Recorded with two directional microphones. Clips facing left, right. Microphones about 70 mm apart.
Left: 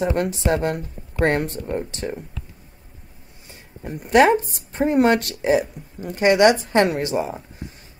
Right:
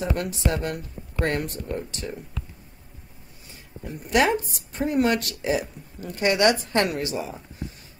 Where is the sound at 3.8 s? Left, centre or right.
Left.